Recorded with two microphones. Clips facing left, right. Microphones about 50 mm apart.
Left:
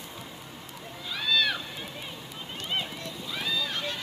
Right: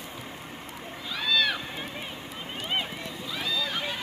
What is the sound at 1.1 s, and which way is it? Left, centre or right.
Cat, centre.